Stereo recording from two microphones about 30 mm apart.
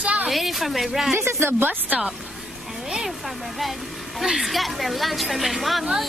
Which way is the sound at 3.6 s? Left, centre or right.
Centre.